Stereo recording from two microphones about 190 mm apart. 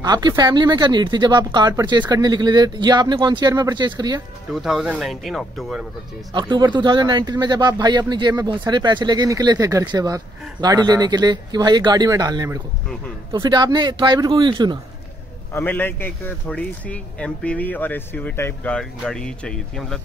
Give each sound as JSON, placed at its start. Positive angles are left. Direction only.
{"t": 0.0, "sound": "speech", "side_deg": -20}
{"t": 4.5, "sound": "speech", "side_deg": 0}
{"t": 6.3, "sound": "speech", "side_deg": -25}
{"t": 15.5, "sound": "a man's voice", "side_deg": 10}